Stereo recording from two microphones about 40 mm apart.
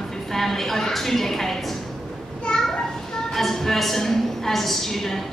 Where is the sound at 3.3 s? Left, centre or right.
Centre.